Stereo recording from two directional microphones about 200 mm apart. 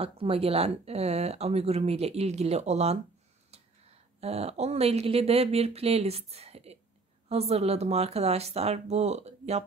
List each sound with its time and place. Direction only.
0.0 s speech: 30° right (ahead or behind)
4.2 s speech: 30° right (ahead or behind)